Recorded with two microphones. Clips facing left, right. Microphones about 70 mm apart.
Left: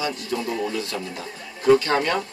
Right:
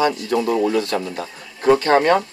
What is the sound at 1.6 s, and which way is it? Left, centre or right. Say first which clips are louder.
Speech: right 4 dB; right.